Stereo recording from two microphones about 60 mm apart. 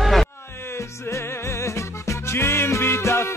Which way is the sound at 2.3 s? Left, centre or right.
Left.